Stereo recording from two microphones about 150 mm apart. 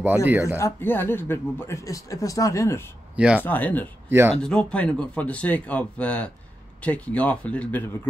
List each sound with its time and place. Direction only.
0.0 s speech: 10° right (ahead or behind)
0.6 s speech: 15° left (ahead or behind)
3.2 s speech: 5° right (ahead or behind)
3.4 s speech: 10° left (ahead or behind)